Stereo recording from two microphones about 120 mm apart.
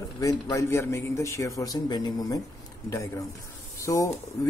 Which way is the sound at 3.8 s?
25° left (ahead or behind).